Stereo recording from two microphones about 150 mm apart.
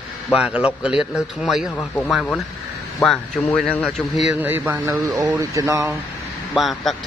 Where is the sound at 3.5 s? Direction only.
5° left (ahead or behind).